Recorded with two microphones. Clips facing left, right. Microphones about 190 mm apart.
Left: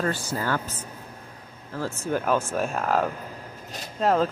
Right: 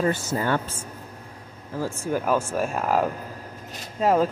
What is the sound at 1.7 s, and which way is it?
Speech, 10° right (ahead or behind).